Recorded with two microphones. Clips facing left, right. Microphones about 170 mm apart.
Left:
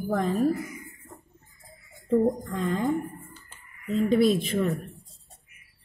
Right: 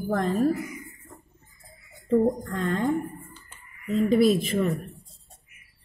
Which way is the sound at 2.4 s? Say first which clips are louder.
Right 1 dB; centre (ahead or behind).